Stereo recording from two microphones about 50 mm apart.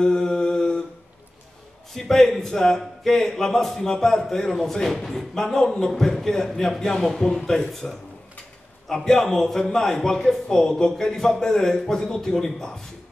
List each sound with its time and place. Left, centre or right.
0.0 s mantra: centre
2.0 s speech: centre